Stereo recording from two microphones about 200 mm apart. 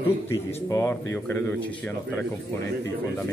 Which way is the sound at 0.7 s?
15° left (ahead or behind).